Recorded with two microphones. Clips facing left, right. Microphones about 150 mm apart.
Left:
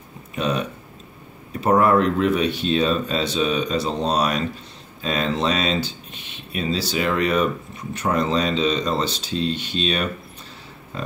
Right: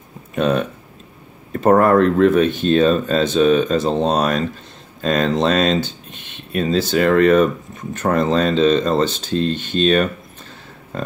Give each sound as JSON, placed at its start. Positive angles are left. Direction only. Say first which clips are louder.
{"t": 0.3, "sound": "speech", "louder": "right 6 dB", "side_deg": -50}